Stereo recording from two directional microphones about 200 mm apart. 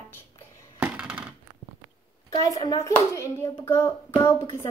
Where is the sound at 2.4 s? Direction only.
20° left (ahead or behind).